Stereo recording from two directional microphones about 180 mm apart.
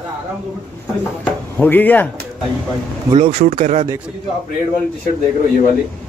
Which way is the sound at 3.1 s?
35° right (ahead or behind).